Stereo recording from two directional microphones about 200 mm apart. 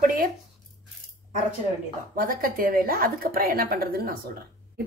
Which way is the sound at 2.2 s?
45° right (ahead or behind).